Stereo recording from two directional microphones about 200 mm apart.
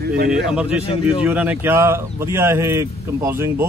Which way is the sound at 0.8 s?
30° left (ahead or behind).